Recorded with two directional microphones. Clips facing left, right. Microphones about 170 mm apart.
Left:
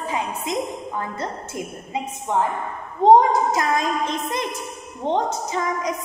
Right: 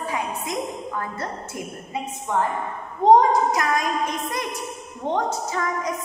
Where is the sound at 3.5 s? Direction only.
25° left (ahead or behind).